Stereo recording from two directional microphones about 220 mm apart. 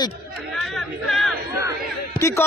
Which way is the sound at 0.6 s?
Centre (ahead or behind).